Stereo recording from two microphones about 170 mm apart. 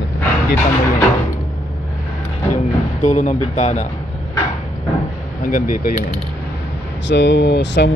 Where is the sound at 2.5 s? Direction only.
45° left (ahead or behind).